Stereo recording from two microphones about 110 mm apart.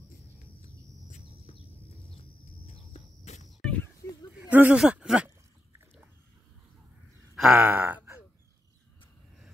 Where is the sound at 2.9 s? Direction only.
90° left.